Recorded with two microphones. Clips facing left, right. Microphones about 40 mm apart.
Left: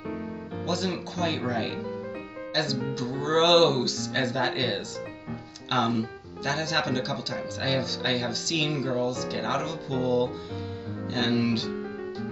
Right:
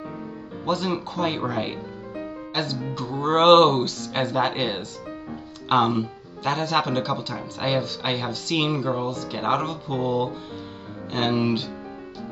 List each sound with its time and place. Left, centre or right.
0.7 s speech: right